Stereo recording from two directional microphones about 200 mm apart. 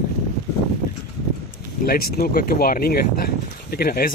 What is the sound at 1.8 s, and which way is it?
Speech, 45° left (ahead or behind).